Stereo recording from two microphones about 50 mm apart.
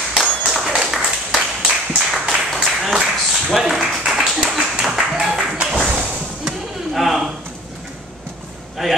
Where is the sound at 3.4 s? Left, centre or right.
Centre.